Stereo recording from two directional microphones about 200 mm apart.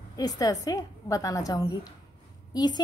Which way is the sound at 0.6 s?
15° left (ahead or behind).